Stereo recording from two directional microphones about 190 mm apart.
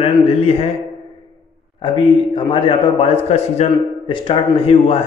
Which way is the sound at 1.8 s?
25° left (ahead or behind).